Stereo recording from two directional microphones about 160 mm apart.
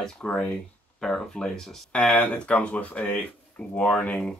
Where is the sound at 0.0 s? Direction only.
5° left (ahead or behind).